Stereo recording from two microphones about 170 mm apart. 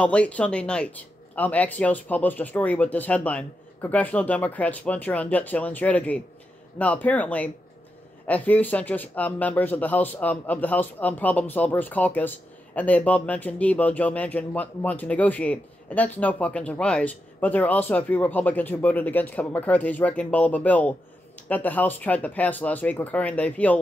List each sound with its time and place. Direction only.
0.0 s speech: 5° left (ahead or behind)